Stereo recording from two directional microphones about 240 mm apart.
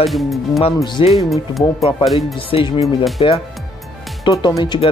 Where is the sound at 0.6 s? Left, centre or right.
Left.